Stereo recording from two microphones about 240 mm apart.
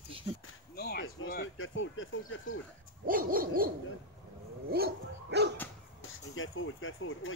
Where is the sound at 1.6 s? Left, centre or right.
Left.